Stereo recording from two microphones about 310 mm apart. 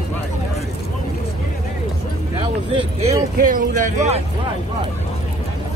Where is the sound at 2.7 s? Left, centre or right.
Centre.